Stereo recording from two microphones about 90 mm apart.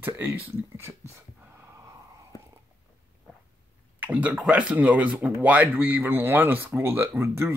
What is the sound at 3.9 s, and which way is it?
Speech, 15° right (ahead or behind).